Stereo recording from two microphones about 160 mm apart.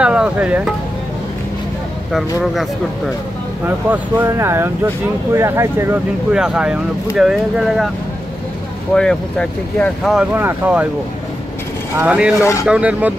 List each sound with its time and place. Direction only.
0.0 s speech: 5° right (ahead or behind)
3.6 s speech: 15° right (ahead or behind)
6.3 s speech: 5° right (ahead or behind)
8.9 s speech: 5° left (ahead or behind)
10.3 s speech: 10° right (ahead or behind)
12.0 s speech: 10° right (ahead or behind)
12.4 s speech: 20° left (ahead or behind)
12.6 s speech: 5° right (ahead or behind)